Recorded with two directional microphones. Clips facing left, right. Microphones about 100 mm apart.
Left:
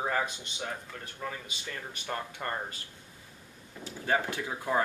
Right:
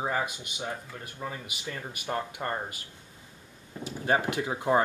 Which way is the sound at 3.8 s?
15° right (ahead or behind).